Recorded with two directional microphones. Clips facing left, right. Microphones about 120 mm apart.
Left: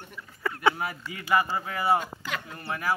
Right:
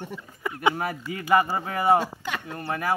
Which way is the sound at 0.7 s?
45° right (ahead or behind).